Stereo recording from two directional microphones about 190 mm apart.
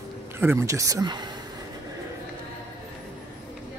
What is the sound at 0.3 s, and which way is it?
Speech, 10° right (ahead or behind).